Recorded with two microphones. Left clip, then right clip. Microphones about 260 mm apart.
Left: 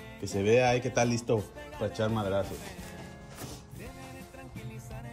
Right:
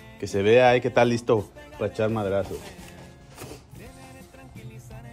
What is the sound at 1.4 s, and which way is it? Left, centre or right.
Speech, centre.